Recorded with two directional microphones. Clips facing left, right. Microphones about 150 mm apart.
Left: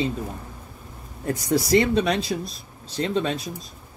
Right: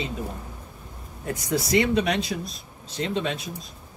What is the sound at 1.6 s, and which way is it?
Speech, 35° left (ahead or behind).